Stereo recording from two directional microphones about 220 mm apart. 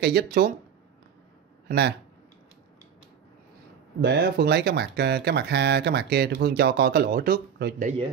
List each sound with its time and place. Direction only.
0.0 s speech: 45° right (ahead or behind)
1.7 s speech: 50° right (ahead or behind)
4.0 s speech: 50° right (ahead or behind)